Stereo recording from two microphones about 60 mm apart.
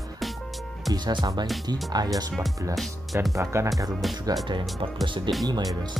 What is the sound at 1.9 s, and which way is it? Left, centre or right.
Speech, right.